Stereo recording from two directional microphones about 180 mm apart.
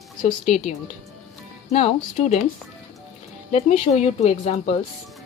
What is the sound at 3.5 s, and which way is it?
A woman's voice, 40° left (ahead or behind).